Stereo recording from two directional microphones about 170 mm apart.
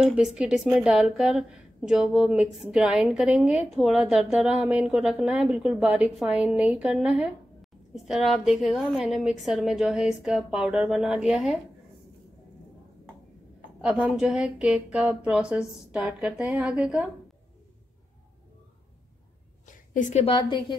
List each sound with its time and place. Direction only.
0.0 s a woman's voice: 5° right (ahead or behind)
13.8 s speech: 5° right (ahead or behind)
19.7 s a woman's voice: 50° left (ahead or behind); by 20.7 s 25° left (ahead or behind)